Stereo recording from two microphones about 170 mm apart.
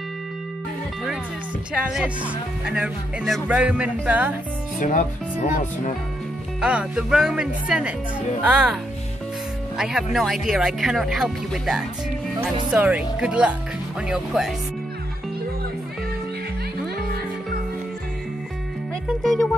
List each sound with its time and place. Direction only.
1.7 s speech: 5° right (ahead or behind)
4.7 s speech: 50° left (ahead or behind)
6.6 s speech: 5° right (ahead or behind)
9.8 s speech: centre (ahead or behind)
19.2 s speech: centre (ahead or behind)